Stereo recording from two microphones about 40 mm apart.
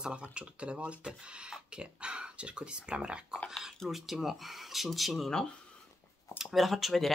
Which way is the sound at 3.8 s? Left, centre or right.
Centre.